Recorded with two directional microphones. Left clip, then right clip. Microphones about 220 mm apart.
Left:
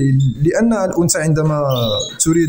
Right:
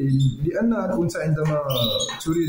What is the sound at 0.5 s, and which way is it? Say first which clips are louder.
A man's voice: left 8 dB; 40° left (ahead or behind).